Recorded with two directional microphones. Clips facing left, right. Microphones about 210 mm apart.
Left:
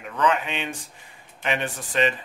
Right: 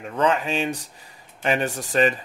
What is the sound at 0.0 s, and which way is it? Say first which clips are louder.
Speech: right 2 dB; 30° right (ahead or behind).